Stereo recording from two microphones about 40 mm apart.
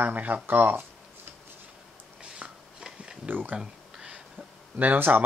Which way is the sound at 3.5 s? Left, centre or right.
Centre.